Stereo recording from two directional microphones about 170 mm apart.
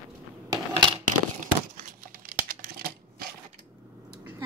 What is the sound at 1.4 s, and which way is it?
Crumpling, 55° right (ahead or behind).